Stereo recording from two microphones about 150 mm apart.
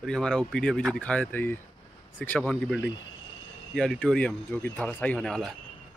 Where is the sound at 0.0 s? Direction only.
5° left (ahead or behind).